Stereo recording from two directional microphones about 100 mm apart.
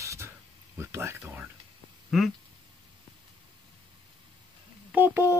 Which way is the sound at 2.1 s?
5° right (ahead or behind).